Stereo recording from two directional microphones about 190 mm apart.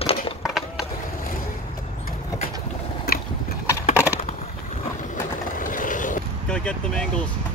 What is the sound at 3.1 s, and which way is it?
Biting, 55° left (ahead or behind).